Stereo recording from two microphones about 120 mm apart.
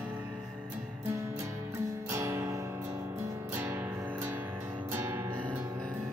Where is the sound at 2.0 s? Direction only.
25° right (ahead or behind).